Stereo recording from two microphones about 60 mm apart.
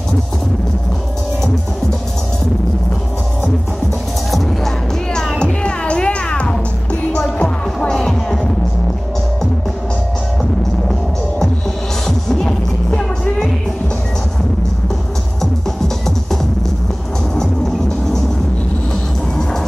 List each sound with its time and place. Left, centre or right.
4.3 s music: centre
7.2 s music: left
7.8 s music: centre
12.3 s music: centre
17.4 s music: centre